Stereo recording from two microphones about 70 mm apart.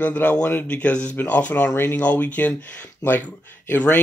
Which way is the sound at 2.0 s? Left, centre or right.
Left.